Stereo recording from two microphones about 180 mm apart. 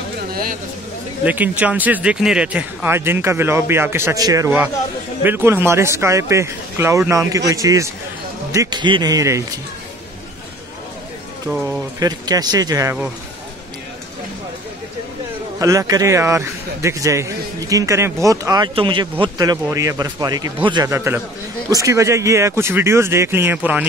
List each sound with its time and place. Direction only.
0.3 s a sound: 55° right (ahead or behind)
1.2 s a man's voice: 10° right (ahead or behind)
12.0 s a man's voice: 20° right (ahead or behind)
15.6 s speech: 15° right (ahead or behind)